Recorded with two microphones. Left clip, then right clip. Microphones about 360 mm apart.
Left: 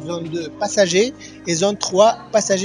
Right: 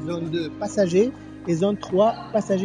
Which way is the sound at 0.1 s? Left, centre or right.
Left.